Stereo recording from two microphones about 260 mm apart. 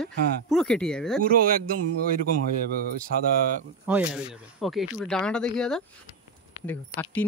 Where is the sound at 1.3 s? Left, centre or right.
Right.